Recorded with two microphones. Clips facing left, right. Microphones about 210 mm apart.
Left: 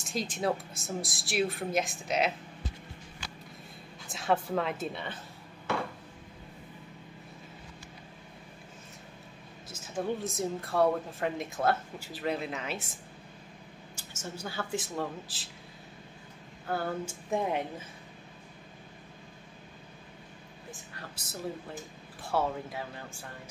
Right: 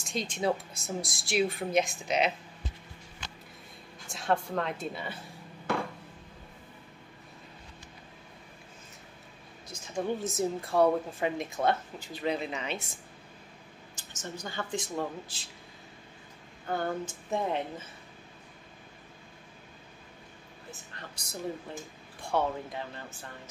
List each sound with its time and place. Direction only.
0.1 s speech: centre (ahead or behind)
4.1 s speech: centre (ahead or behind)
9.7 s speech: 5° left (ahead or behind)
13.9 s speech: 10° left (ahead or behind)
16.6 s speech: 5° left (ahead or behind)
20.7 s a woman's voice: 5° left (ahead or behind)